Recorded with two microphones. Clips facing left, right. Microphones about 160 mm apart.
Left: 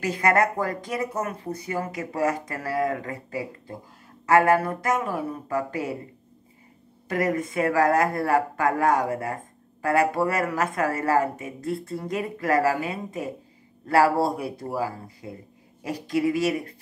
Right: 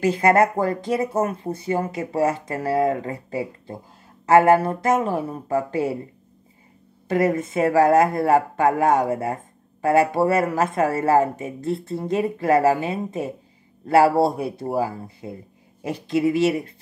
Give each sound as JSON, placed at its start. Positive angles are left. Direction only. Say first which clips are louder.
{"t": 0.0, "sound": "speech", "louder": "right 5 dB", "side_deg": -25}
{"t": 7.1, "sound": "speech", "louder": "right 4 dB", "side_deg": -25}